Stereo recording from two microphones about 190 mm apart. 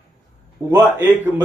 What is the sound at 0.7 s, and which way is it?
Speech, 10° right (ahead or behind).